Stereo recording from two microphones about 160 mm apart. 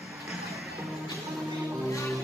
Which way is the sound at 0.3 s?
Centre (ahead or behind).